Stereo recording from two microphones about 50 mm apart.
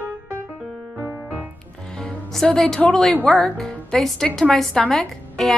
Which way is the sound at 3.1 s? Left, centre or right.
Left.